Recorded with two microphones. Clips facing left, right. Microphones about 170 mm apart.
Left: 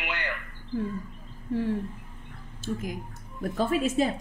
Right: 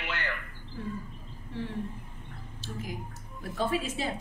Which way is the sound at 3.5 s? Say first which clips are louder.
Left 5 dB; 45° left (ahead or behind).